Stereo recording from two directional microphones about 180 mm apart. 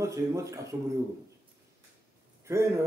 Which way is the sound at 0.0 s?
15° right (ahead or behind).